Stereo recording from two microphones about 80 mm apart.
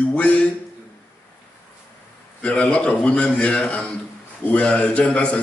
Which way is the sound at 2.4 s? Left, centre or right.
Centre.